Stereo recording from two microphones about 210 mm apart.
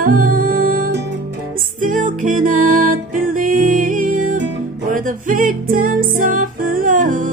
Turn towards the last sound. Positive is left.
turn(degrees=-40)  # may be behind; listen again after turning